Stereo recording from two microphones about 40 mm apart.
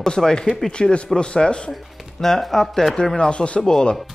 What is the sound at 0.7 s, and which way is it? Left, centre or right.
A man's voice, left.